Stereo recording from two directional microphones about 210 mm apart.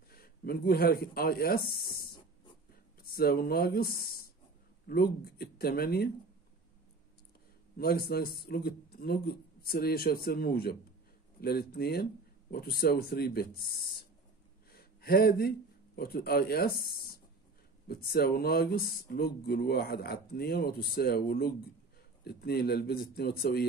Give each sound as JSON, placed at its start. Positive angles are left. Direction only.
{"t": 0.1, "sound": "speech", "side_deg": 45}
{"t": 7.7, "sound": "speech", "side_deg": 45}
{"t": 14.7, "sound": "a sound", "side_deg": 45}
{"t": 16.0, "sound": "speech", "side_deg": 45}